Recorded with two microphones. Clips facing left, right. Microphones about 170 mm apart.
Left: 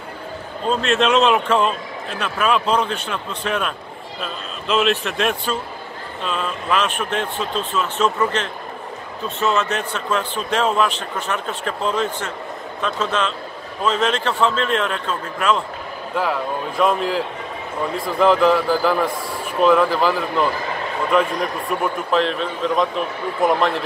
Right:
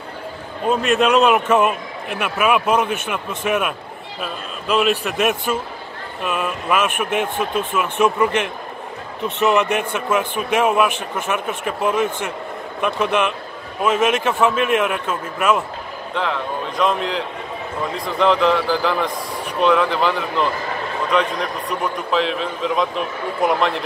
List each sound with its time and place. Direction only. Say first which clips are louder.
0.7 s a man's voice: right 2 dB; 10° right (ahead or behind)
16.2 s a man's voice: left 1 dB; 5° left (ahead or behind)